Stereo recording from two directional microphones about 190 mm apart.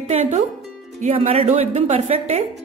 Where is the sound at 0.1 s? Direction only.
35° right (ahead or behind).